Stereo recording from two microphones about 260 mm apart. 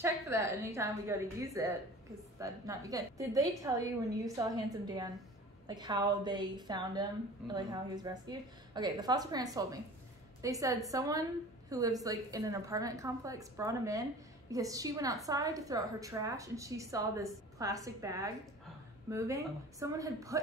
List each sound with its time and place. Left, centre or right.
0.0 s a woman's voice: centre